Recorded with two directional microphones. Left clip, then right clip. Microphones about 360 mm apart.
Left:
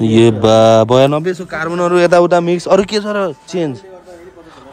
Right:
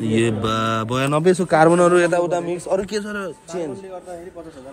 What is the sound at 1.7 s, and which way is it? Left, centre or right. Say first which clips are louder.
Mantra: left 5 dB; centre.